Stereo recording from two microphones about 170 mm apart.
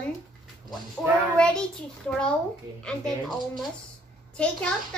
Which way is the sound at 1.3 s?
5° left (ahead or behind).